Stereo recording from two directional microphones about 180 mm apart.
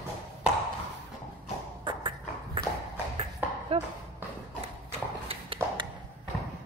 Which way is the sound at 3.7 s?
35° right (ahead or behind).